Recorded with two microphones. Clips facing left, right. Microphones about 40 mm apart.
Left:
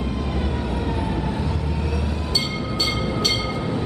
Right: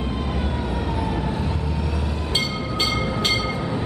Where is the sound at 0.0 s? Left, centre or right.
Right.